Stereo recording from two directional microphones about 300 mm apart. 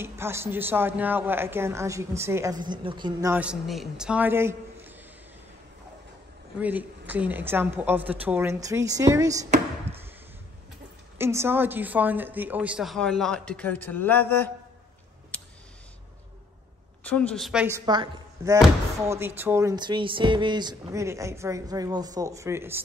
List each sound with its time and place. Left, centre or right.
0.0 s speech: centre
6.6 s speech: centre
11.1 s a woman's voice: centre
17.0 s speech: centre